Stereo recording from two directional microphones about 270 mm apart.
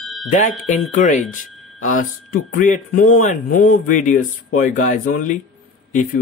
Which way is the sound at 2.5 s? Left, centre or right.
Left.